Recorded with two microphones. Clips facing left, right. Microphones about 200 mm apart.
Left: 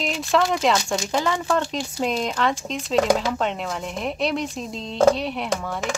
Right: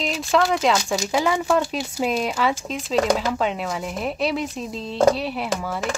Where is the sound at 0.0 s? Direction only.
Centre (ahead or behind).